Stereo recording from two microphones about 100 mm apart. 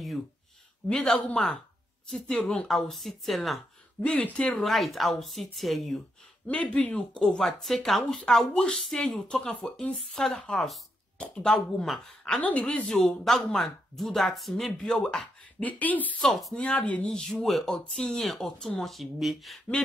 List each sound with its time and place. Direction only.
0.8 s speech: 5° left (ahead or behind)
2.7 s speech: centre (ahead or behind)
4.0 s speech: 15° left (ahead or behind)
6.4 s speech: 15° left (ahead or behind)
12.4 s speech: 15° left (ahead or behind)
15.6 s speech: 15° left (ahead or behind)
16.3 s speech: centre (ahead or behind)
16.5 s speech: 10° left (ahead or behind)